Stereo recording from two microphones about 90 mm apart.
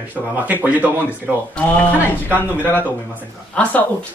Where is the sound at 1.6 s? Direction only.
20° left (ahead or behind).